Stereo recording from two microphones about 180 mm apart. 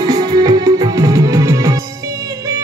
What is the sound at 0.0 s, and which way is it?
Music, 20° right (ahead or behind).